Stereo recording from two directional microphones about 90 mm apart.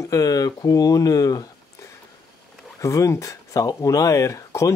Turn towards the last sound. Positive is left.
turn(degrees=35)  # may be behind; listen again after turning